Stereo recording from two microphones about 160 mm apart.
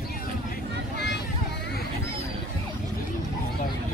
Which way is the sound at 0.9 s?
90° left.